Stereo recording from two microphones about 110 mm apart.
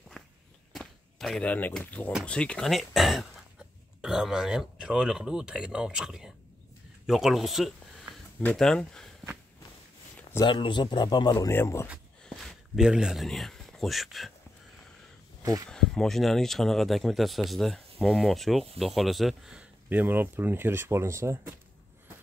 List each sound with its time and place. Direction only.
0.2 s walk: 5° left (ahead or behind)
0.7 s a sound: centre (ahead or behind)
1.4 s speech: 15° left (ahead or behind)
10.4 s speech: 45° left (ahead or behind)
11.5 s speech: 25° left (ahead or behind)
12.2 s a sound: centre (ahead or behind)
15.7 s speech: 5° left (ahead or behind)
19.9 s speech: 15° right (ahead or behind)